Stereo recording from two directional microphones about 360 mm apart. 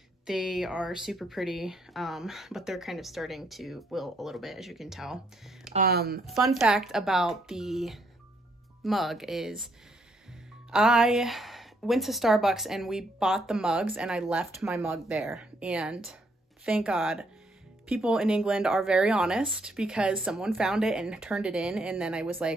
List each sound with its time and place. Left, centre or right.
0.3 s a woman's voice: centre
5.8 s speech: right
6.2 s a woman's voice: centre
10.7 s a woman's voice: centre